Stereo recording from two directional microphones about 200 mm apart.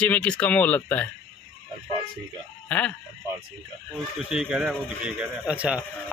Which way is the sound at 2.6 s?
5° left (ahead or behind).